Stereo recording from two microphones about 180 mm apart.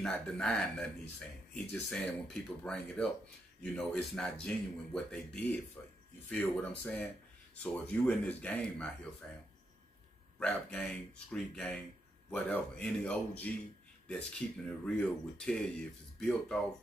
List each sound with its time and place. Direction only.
0.0 s speech: 5° left (ahead or behind)
10.4 s speech: 5° left (ahead or behind)